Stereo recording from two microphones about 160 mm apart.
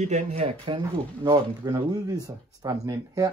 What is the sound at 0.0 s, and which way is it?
Speech, 45° right (ahead or behind).